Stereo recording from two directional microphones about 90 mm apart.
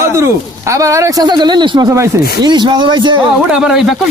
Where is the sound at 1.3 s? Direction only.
55° right (ahead or behind).